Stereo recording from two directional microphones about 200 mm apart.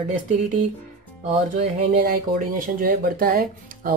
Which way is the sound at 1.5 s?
40° right (ahead or behind).